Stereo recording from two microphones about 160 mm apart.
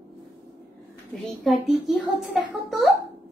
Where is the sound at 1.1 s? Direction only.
Centre (ahead or behind).